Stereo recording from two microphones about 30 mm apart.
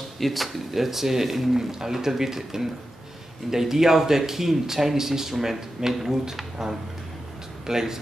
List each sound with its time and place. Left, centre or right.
0.2 s speech: centre